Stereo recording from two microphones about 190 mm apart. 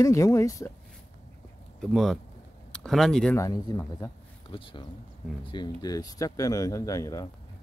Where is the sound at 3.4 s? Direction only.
15° left (ahead or behind).